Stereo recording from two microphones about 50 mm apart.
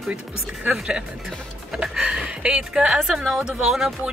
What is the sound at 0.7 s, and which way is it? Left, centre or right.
Speech, right.